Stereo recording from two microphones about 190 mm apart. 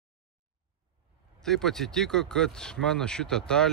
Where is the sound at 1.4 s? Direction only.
Centre (ahead or behind).